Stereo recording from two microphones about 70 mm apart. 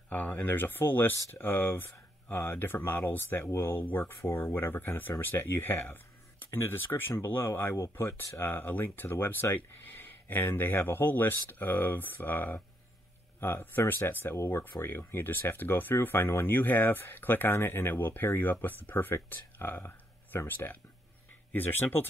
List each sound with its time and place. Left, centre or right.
0.1 s speech: left